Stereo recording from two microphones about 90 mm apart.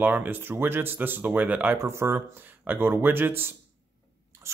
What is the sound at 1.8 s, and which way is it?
Speech, 30° right (ahead or behind).